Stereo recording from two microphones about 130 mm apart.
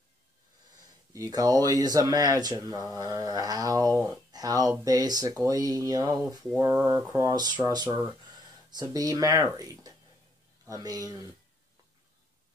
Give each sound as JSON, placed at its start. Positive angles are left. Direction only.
{"t": 1.1, "sound": "speech", "side_deg": -25}